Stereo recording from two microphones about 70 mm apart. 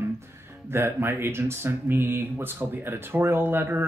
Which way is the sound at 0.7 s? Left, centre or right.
Right.